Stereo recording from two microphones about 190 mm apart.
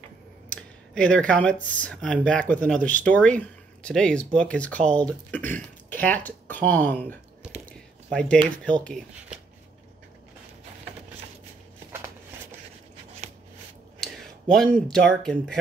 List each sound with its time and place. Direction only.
0.5 s speech: 5° left (ahead or behind)
13.9 s speech: centre (ahead or behind)